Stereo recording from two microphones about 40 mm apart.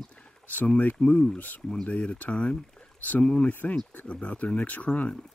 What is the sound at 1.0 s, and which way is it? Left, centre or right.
Speech, left.